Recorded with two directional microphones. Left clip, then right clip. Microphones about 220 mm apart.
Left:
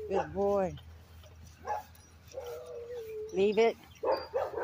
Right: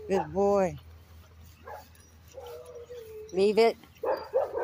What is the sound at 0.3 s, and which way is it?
Speech, 25° right (ahead or behind).